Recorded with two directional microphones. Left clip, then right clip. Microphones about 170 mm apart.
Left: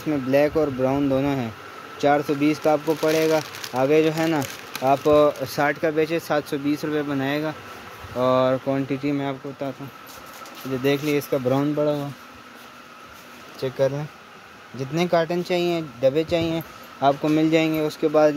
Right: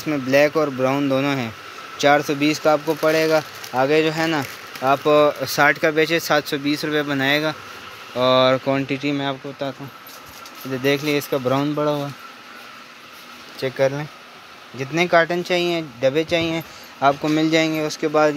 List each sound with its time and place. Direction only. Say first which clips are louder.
0.0 s speech: right 3 dB; centre (ahead or behind)
11.7 s speech: right 1 dB; 25° right (ahead or behind)
13.6 s speech: right 3 dB; 10° right (ahead or behind); by 18.3 s 5° left (ahead or behind)